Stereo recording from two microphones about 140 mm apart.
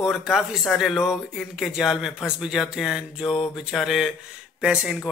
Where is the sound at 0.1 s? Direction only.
Centre (ahead or behind).